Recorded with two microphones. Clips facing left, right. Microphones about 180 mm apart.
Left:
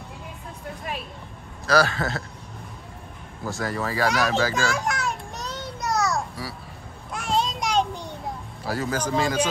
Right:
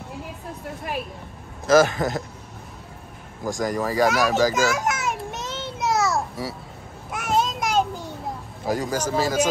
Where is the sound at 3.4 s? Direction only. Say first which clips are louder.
Right 4 dB; 15° right (ahead or behind).